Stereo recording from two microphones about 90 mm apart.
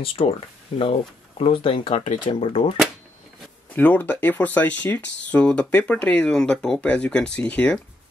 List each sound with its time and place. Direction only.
0.0 s speech: 90° left; by 2.6 s 70° left (ahead or behind)
3.7 s speech: 20° left (ahead or behind)